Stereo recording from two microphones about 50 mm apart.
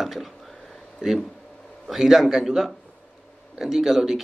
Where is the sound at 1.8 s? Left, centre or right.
Centre.